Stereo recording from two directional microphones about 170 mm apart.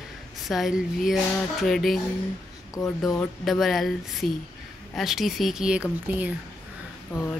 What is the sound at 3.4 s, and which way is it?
Speech, centre (ahead or behind).